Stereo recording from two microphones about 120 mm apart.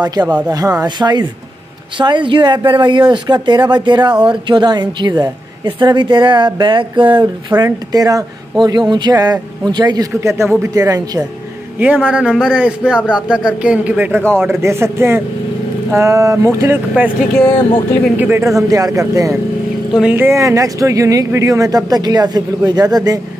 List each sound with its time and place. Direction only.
0.0 s speech: 35° right (ahead or behind)
11.8 s a man's voice: 15° right (ahead or behind)
18.1 s a man's voice: 15° right (ahead or behind)
18.6 s speech: 30° right (ahead or behind)
19.9 s speech: 5° right (ahead or behind)
20.2 s speech: 25° right (ahead or behind)